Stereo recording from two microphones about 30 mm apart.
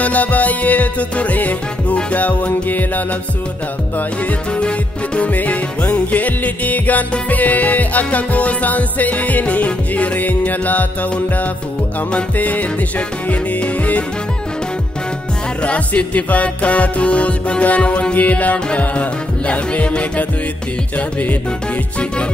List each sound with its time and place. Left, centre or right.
0.0 s music: left
4.6 s music: left
5.2 s music: left
15.6 s music: left
18.1 s music: left
18.9 s music: left